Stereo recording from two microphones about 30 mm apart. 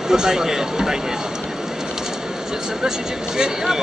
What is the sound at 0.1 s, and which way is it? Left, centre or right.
Speech, right.